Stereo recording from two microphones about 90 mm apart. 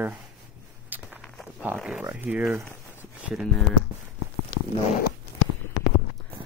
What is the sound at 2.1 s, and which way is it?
Speech, 20° right (ahead or behind).